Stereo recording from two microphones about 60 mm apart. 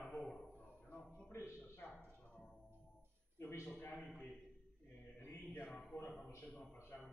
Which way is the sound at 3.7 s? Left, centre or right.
Left.